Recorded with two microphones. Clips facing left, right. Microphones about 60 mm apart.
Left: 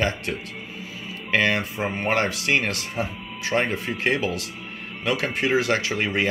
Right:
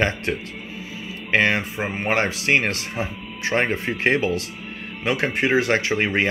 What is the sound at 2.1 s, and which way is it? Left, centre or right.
Speech, right.